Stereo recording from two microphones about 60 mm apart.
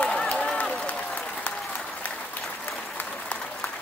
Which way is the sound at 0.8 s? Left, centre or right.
Left.